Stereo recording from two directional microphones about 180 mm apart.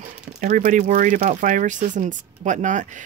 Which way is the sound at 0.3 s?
45° right (ahead or behind).